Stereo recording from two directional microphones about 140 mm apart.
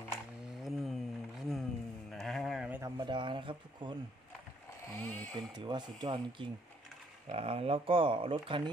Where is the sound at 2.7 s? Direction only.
20° right (ahead or behind).